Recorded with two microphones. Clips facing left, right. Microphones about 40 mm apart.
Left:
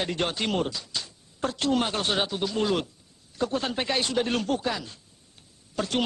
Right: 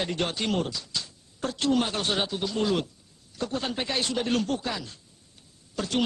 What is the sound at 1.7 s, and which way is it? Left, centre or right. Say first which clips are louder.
Speech: even; centre.